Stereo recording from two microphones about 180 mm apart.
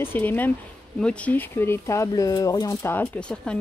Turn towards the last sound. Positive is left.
turn(degrees=10)  # may be behind; listen again after turning